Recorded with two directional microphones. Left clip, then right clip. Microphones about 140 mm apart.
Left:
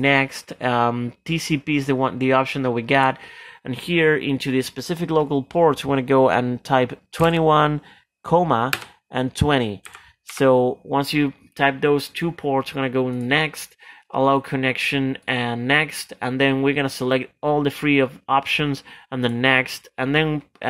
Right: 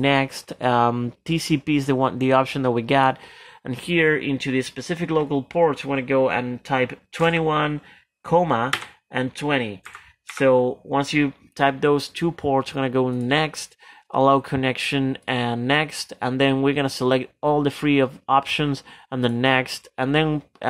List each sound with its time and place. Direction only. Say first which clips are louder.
0.0 s speech: left 2 dB; centre (ahead or behind)
3.6 s speech: left 1 dB; 10° left (ahead or behind)
9.3 s speech: left 5 dB; 30° left (ahead or behind); by 20.6 s centre (ahead or behind)